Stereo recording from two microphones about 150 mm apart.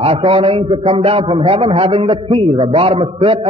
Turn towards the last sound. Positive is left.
turn(degrees=-40)  # may be behind; listen again after turning